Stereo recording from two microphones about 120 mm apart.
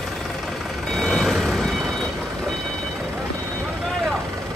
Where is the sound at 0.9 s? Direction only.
Centre (ahead or behind).